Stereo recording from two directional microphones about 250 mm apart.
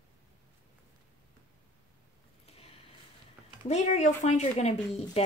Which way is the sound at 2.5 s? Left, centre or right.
Left.